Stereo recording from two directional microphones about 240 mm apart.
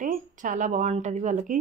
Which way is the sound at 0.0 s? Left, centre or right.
Right.